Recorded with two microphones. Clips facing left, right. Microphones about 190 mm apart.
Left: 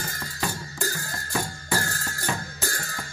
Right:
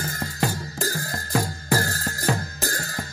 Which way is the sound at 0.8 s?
35° right (ahead or behind).